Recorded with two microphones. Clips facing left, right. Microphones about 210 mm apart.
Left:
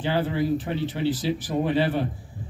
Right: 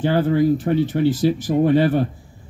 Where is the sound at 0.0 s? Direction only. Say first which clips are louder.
Right 7 dB; 45° right (ahead or behind).